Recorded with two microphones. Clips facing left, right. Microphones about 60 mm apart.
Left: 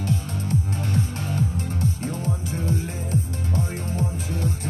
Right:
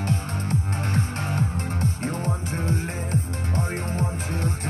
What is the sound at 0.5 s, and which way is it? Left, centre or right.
Music, right.